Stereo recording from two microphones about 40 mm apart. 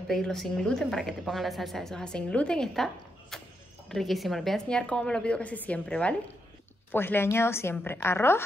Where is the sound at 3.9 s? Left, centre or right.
Centre.